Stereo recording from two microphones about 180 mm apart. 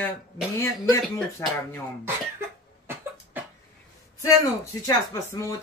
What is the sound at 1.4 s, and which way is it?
Speech, 15° left (ahead or behind).